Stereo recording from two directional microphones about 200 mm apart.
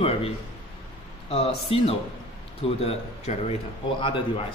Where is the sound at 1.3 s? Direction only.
25° left (ahead or behind).